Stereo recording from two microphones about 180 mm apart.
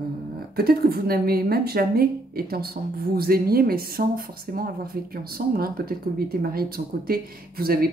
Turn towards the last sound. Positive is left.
turn(degrees=-55)  # may be behind; listen again after turning